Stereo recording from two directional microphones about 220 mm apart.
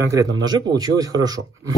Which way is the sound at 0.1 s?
15° right (ahead or behind).